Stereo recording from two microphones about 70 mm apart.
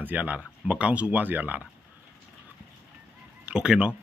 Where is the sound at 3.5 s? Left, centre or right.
Centre.